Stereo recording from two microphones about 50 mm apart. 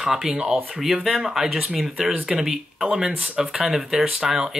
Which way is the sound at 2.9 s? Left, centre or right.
Right.